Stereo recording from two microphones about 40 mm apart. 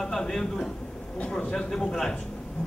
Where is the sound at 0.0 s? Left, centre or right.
Centre; by 1.5 s left.